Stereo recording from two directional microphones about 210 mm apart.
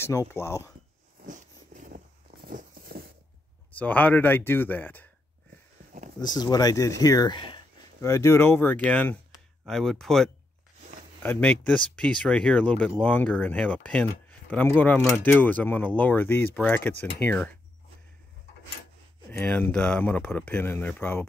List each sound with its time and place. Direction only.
0.0 s speech: 15° left (ahead or behind)
1.2 s a sound: 40° right (ahead or behind)
3.7 s speech: 10° left (ahead or behind)
6.2 s speech: 20° left (ahead or behind)
19.3 s speech: 10° left (ahead or behind)